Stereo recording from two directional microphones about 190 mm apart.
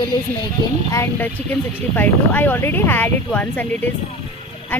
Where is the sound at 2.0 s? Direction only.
10° left (ahead or behind).